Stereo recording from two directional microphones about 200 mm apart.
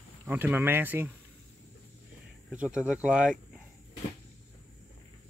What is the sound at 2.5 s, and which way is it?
Speech, 5° right (ahead or behind).